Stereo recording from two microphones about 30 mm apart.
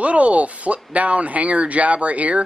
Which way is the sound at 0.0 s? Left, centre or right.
Right.